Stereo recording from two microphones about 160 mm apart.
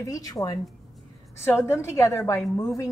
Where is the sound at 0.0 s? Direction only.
20° left (ahead or behind).